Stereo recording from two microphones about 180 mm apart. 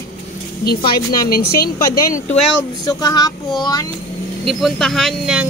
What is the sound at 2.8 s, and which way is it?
Speech, 20° left (ahead or behind).